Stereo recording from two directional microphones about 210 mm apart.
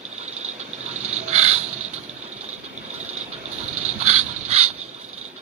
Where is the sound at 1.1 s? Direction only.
30° right (ahead or behind).